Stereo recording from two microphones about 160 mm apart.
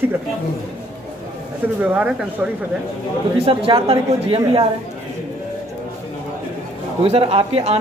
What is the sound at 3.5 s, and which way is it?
Speech, 35° right (ahead or behind).